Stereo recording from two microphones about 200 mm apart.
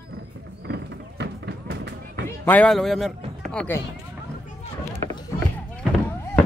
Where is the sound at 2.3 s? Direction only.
10° left (ahead or behind).